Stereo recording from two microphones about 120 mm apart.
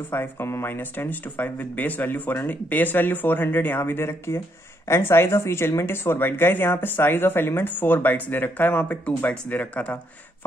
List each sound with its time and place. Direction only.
0.1 s speech: 20° left (ahead or behind)